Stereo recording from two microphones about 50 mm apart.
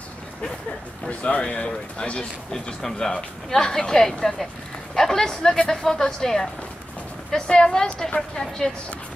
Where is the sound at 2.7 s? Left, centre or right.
Centre.